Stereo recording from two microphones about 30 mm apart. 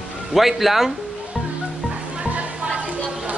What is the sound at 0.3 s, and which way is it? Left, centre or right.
Speech, centre.